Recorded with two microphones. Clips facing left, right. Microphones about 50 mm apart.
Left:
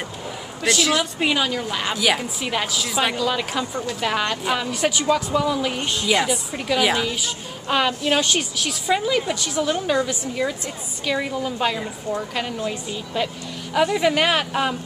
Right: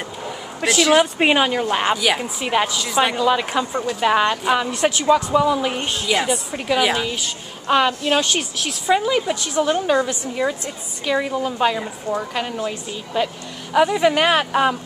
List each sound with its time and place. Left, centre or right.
0.7 s a woman's voice: centre
1.1 s speech: right
2.0 s a woman's voice: centre
2.4 s speech: centre
2.7 s a woman's voice: centre
3.2 s speech: centre
6.0 s a woman's voice: centre; by 10.5 s right
11.1 s a woman's voice: centre